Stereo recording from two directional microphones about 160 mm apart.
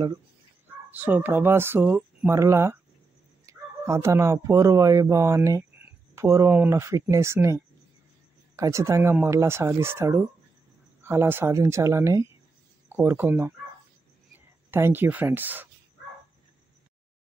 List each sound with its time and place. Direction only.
0.9 s speech: 10° right (ahead or behind)
8.5 s speech: 20° right (ahead or behind)
14.7 s speech: 15° right (ahead or behind)